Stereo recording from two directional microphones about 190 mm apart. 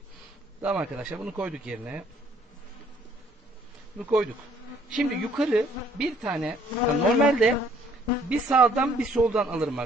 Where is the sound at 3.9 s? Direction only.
5° right (ahead or behind).